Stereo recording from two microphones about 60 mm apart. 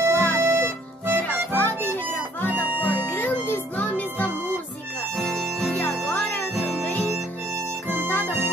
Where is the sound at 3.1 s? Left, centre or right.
Left.